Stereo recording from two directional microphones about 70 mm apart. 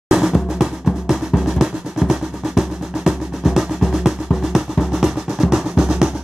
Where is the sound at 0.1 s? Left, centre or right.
Centre.